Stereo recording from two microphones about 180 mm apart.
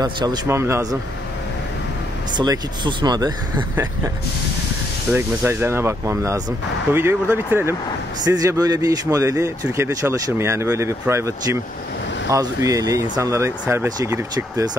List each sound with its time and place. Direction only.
0.0 s a man's voice: 20° right (ahead or behind)
2.3 s speech: 25° right (ahead or behind)
5.1 s a man's voice: 10° right (ahead or behind)